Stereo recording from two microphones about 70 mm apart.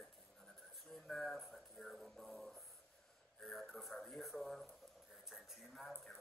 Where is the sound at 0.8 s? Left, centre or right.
Centre.